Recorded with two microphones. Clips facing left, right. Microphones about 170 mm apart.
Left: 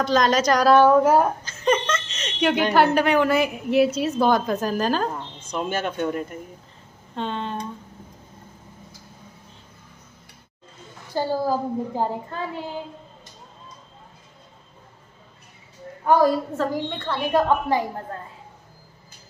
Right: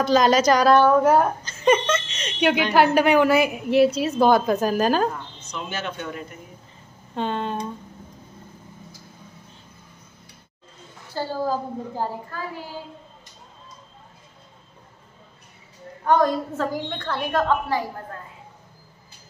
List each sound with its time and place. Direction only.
0.0 s a woman's voice: 5° right (ahead or behind)
1.6 s a woman's voice: 10° right (ahead or behind)
5.4 s speech: 50° left (ahead or behind)
7.2 s a woman's voice: 5° right (ahead or behind)
11.1 s a woman's voice: 15° left (ahead or behind)
16.1 s a woman's voice: 5° left (ahead or behind)